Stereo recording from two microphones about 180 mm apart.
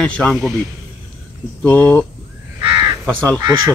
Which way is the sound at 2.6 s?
20° right (ahead or behind).